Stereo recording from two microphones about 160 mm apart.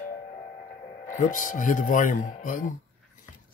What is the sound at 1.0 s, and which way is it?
Speech, 55° left (ahead or behind).